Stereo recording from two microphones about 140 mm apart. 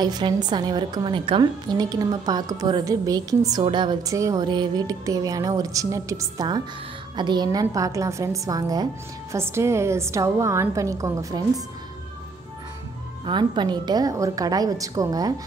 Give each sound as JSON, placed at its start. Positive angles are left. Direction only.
{"t": 0.0, "sound": "a woman's voice", "side_deg": -30}
{"t": 13.2, "sound": "a woman's voice", "side_deg": -35}